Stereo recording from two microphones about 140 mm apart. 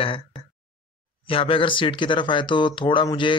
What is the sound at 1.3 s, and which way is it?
A man's voice, 40° left (ahead or behind).